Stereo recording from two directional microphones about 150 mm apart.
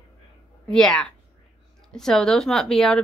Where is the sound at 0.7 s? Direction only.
5° left (ahead or behind).